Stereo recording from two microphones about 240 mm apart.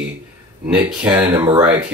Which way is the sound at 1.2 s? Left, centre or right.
Centre.